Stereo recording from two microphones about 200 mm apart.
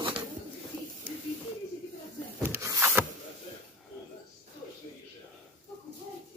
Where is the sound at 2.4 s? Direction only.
15° right (ahead or behind).